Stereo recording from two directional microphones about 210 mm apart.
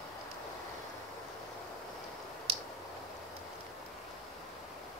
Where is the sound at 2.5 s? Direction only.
30° right (ahead or behind).